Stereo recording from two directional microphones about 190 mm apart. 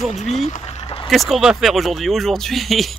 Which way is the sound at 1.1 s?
Centre (ahead or behind).